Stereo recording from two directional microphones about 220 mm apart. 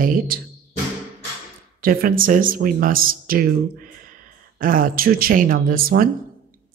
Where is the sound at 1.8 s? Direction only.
40° right (ahead or behind).